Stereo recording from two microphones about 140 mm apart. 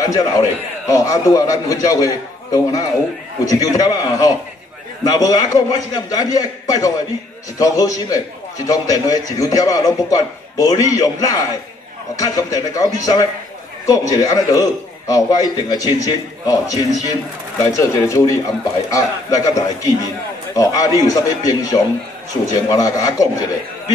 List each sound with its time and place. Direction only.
0.0 s a man's voice: 25° left (ahead or behind)